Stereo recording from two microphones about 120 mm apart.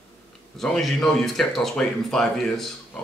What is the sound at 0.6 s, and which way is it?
Speech, centre (ahead or behind).